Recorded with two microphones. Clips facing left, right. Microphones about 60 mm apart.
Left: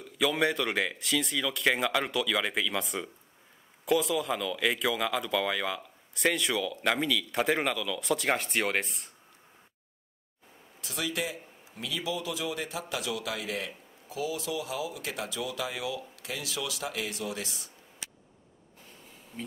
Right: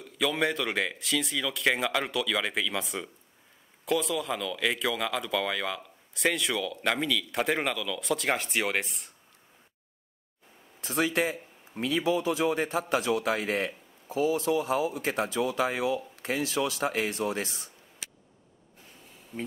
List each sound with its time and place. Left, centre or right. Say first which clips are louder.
0.0 s speech: left 1 dB; centre
10.8 s a man's voice: right 6 dB; right